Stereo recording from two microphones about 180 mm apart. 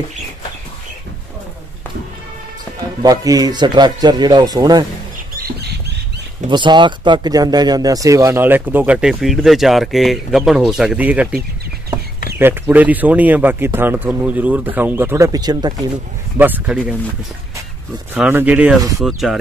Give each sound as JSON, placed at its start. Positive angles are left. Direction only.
{"t": 3.0, "sound": "speech", "side_deg": -20}
{"t": 5.3, "sound": "rodents", "side_deg": -60}
{"t": 6.5, "sound": "speech", "side_deg": -25}
{"t": 16.3, "sound": "speech", "side_deg": -10}
{"t": 18.1, "sound": "speech", "side_deg": -10}